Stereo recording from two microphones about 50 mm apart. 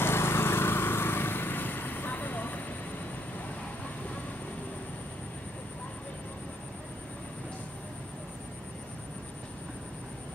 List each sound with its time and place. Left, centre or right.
0.0 s vehicle: left